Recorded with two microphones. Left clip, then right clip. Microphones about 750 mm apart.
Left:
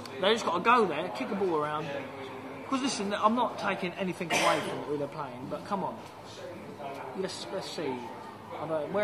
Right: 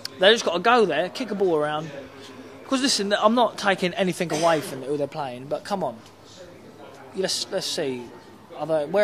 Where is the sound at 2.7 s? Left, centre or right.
Right.